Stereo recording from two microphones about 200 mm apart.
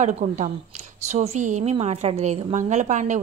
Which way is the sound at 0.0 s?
40° right (ahead or behind).